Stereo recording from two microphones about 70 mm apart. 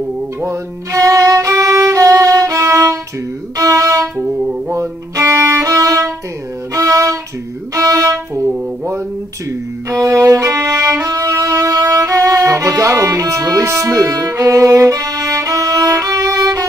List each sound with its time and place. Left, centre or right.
0.4 s violin: right
4.2 s music: right
4.7 s violin: right
6.7 s music: right
7.7 s violin: right
9.8 s violin: right
11.9 s music: right